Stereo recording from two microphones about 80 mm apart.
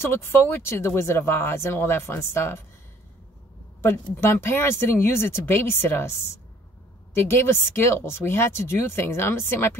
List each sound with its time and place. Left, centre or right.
0.0 s speech: left
3.8 s speech: left
7.2 s speech: left